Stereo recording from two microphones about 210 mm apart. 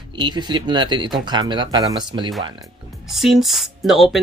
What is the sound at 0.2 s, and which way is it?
Speech, 20° right (ahead or behind).